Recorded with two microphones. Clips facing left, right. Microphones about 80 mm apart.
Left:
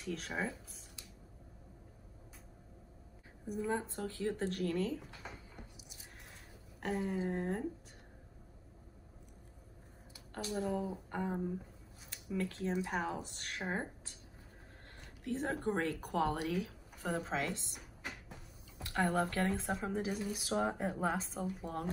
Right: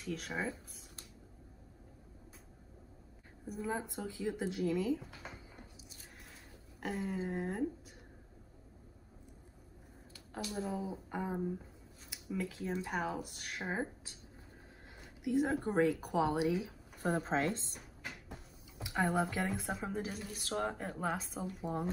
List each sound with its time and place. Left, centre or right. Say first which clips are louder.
0.0 s speech: even; centre
3.4 s speech: left 2 dB; centre
3.8 s speech: left 1 dB; centre
6.2 s a sound: even; centre
7.2 s speech: left 1 dB; centre
10.6 s speech: left 3 dB; centre
17.0 s a woman's voice: right 4 dB; right
18.8 s speech: even; centre
19.6 s speech: left 2 dB; centre
21.6 s speech: right 6 dB; centre